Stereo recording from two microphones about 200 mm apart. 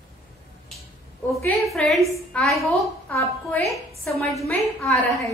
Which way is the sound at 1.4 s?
Centre (ahead or behind).